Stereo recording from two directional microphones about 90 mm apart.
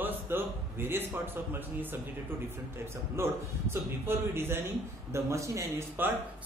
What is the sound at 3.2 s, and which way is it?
A man's voice, 25° right (ahead or behind).